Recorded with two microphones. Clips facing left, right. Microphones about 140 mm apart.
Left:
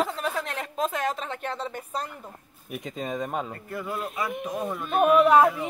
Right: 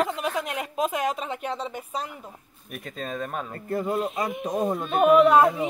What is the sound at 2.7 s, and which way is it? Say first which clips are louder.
Speech: left 2 dB; 15° left (ahead or behind).